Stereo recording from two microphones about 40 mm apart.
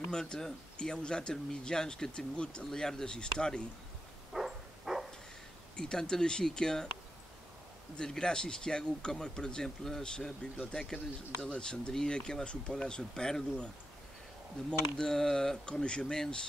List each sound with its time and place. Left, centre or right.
0.1 s speech: centre
4.3 s a sound: centre
5.8 s speech: centre
8.0 s speech: centre